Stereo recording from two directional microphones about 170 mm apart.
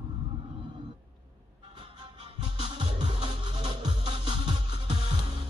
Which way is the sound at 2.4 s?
30° right (ahead or behind).